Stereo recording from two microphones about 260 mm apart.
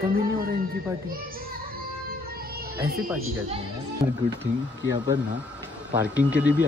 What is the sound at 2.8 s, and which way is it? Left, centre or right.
Speech, right.